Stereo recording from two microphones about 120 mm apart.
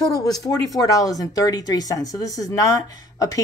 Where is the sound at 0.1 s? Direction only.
30° left (ahead or behind).